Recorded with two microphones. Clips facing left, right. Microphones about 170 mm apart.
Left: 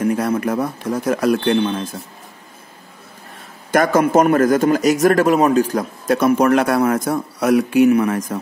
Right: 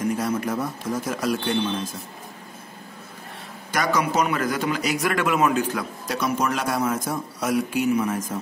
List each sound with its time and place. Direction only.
0.0 s speech: 60° left (ahead or behind)
3.7 s a man's voice: 50° left (ahead or behind)